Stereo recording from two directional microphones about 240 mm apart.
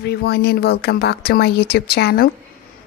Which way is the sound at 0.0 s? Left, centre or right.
Left.